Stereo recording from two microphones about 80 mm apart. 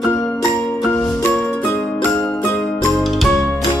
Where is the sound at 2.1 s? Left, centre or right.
Left.